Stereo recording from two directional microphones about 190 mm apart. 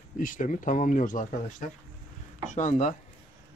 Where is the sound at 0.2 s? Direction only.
45° left (ahead or behind).